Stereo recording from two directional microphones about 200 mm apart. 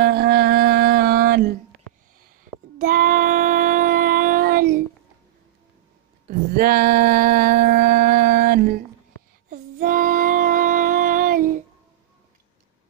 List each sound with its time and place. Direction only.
0.0 s music: 55° right (ahead or behind)
2.8 s music: 40° right (ahead or behind)
6.2 s music: 45° right (ahead or behind)
9.5 s child singing: 40° right (ahead or behind)